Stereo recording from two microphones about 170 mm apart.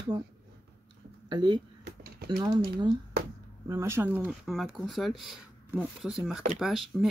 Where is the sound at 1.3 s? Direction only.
25° right (ahead or behind).